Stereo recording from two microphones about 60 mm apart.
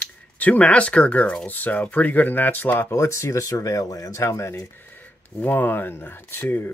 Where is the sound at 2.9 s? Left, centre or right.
Left.